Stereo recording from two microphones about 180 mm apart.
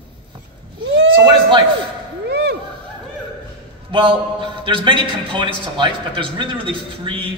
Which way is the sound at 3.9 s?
30° right (ahead or behind).